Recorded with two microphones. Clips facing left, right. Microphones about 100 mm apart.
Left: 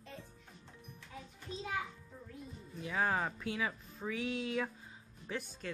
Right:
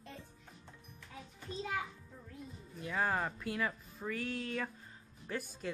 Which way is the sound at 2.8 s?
Centre (ahead or behind).